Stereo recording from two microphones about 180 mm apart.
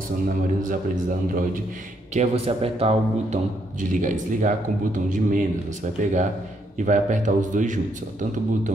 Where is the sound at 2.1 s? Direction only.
35° right (ahead or behind).